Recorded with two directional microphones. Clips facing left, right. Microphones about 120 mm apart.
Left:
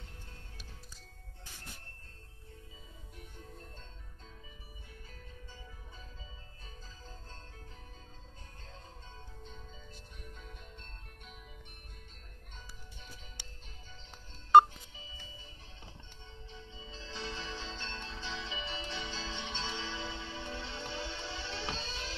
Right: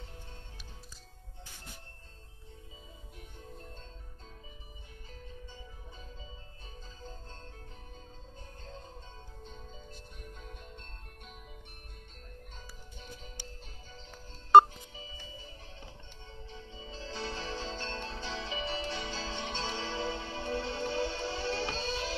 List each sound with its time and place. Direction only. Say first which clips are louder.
16.4 s music: right 3 dB; 45° right (ahead or behind)